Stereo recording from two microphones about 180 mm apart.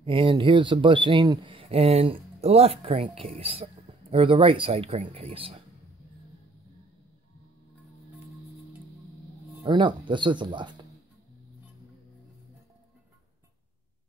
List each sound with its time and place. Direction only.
0.0 s speech: 30° right (ahead or behind)
9.7 s speech: 25° right (ahead or behind)